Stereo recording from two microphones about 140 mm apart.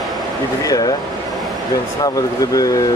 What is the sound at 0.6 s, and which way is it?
Speech, 25° left (ahead or behind).